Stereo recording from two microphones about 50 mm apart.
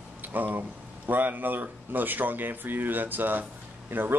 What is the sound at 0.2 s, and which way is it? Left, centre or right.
Speech, right.